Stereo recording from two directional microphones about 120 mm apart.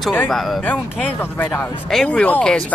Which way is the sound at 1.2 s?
15° left (ahead or behind).